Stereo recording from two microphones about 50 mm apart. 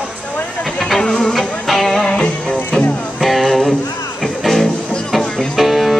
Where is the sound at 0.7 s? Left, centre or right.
Centre.